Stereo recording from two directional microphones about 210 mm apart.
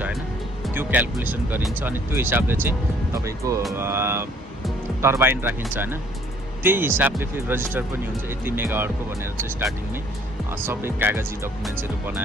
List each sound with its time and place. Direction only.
0.7 s speech: 10° right (ahead or behind)